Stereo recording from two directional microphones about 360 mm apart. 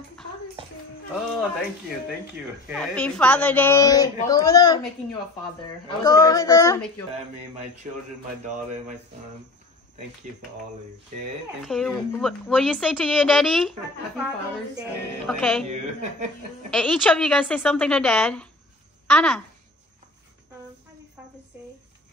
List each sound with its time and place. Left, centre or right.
2.7 s speech: centre
6.0 s speech: centre
8.5 s speech: right
11.6 s speech: centre
15.6 s a woman's voice: centre
16.7 s speech: centre